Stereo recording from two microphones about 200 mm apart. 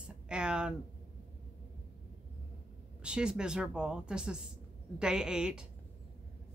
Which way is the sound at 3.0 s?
5° right (ahead or behind).